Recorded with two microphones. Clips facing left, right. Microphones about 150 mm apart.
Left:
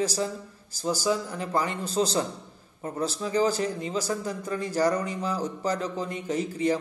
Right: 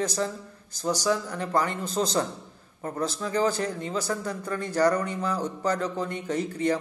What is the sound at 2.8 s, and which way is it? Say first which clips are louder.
Speech: even; 25° left (ahead or behind).